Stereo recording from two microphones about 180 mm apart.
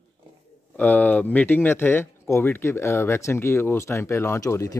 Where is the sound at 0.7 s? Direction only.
10° left (ahead or behind).